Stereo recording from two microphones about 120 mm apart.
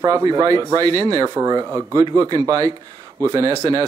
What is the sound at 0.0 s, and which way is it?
Speech, 30° right (ahead or behind).